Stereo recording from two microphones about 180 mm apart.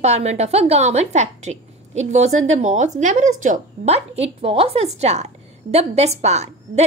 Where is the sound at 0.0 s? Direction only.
35° right (ahead or behind).